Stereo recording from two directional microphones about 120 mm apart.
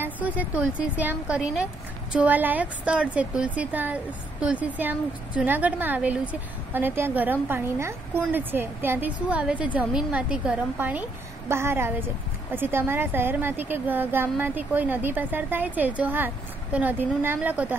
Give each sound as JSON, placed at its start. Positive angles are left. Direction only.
{"t": 0.0, "sound": "a woman's voice", "side_deg": -15}